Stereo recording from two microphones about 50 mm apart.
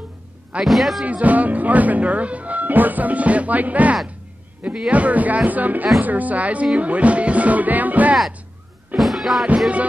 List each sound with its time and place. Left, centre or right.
0.7 s speech: centre
1.0 s speech: right
8.9 s speech: centre